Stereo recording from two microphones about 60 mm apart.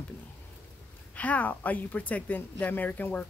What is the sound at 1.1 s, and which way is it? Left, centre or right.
Speech, left.